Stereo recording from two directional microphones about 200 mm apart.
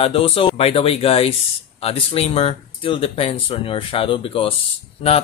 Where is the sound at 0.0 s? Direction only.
30° left (ahead or behind).